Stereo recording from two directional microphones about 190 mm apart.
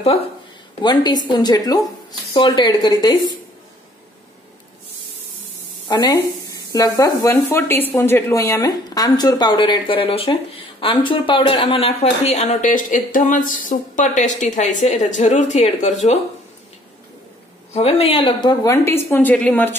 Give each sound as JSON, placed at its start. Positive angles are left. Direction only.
{"t": 0.8, "sound": "speech", "side_deg": 25}
{"t": 5.9, "sound": "speech", "side_deg": 20}
{"t": 17.7, "sound": "a woman's voice", "side_deg": 30}